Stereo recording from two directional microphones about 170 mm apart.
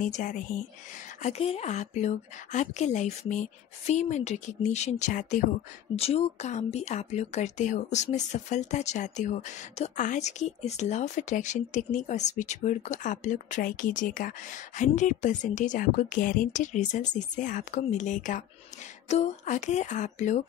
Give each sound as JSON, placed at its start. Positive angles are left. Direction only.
{"t": 0.0, "sound": "speech", "side_deg": 50}